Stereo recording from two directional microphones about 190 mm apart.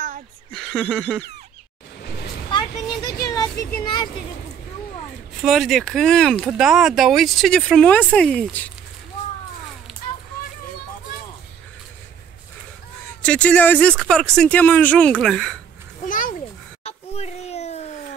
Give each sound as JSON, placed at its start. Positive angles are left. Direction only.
{"t": 0.5, "sound": "speech", "side_deg": 5}
{"t": 3.1, "sound": "speech", "side_deg": 20}
{"t": 5.4, "sound": "speech", "side_deg": 0}
{"t": 13.2, "sound": "speech", "side_deg": 5}
{"t": 16.1, "sound": "a sound", "side_deg": 45}
{"t": 16.8, "sound": "a sound", "side_deg": 35}